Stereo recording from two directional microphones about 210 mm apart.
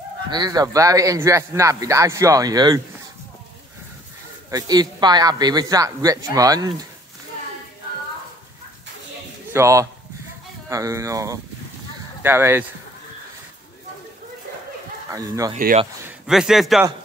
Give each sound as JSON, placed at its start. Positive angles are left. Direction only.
{"t": 0.3, "sound": "speech", "side_deg": -20}
{"t": 4.5, "sound": "speech", "side_deg": -20}
{"t": 9.5, "sound": "speech", "side_deg": -15}
{"t": 15.0, "sound": "speech", "side_deg": -15}
{"t": 15.5, "sound": "speech", "side_deg": -35}
{"t": 16.1, "sound": "a man's voice", "side_deg": 0}